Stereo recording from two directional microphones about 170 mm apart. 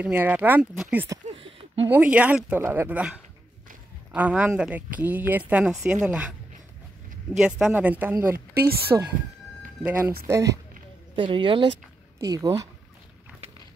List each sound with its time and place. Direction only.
0.0 s speech: 10° right (ahead or behind)
7.3 s speech: 5° right (ahead or behind)
11.1 s speech: 30° right (ahead or behind)